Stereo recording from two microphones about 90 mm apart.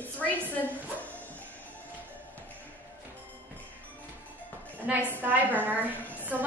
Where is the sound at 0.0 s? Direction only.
15° left (ahead or behind).